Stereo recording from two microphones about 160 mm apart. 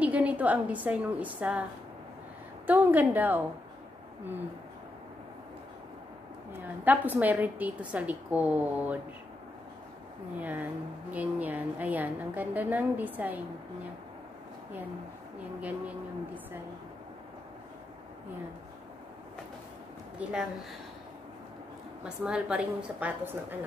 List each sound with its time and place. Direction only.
0.0 s a woman's voice: 10° right (ahead or behind)
6.5 s a woman's voice: 10° right (ahead or behind)
10.4 s a woman's voice: 10° right (ahead or behind)
20.2 s speech: 10° right (ahead or behind)
22.0 s a woman's voice: 5° right (ahead or behind)